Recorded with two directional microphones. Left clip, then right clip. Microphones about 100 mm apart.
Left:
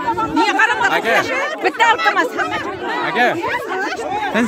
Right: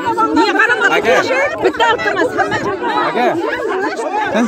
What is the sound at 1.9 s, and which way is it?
Speech, 30° left (ahead or behind).